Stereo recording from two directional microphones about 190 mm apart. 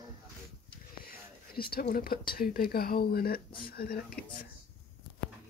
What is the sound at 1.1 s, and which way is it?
Speech, 55° left (ahead or behind).